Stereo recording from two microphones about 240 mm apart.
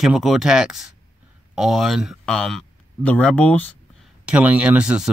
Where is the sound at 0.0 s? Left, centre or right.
Centre.